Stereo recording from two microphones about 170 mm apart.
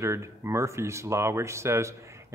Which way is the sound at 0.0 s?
15° right (ahead or behind).